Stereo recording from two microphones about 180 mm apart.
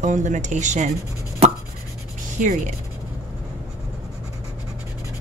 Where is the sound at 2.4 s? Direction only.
45° right (ahead or behind).